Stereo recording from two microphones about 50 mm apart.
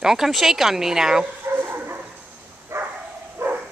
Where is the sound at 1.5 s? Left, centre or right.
Right.